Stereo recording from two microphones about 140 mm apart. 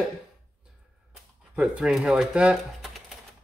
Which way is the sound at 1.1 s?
5° right (ahead or behind).